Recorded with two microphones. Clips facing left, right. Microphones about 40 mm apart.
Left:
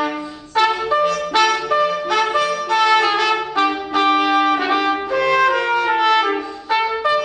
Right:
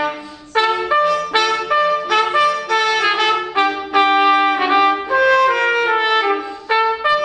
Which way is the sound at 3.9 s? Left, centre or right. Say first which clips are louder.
Right 4 dB; right.